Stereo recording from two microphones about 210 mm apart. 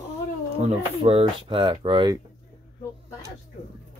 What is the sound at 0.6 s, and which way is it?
Speech, 30° right (ahead or behind).